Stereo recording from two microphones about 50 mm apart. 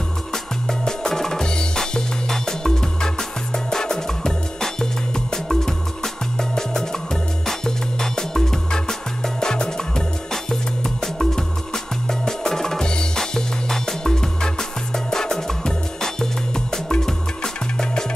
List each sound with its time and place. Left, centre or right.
0.3 s music: centre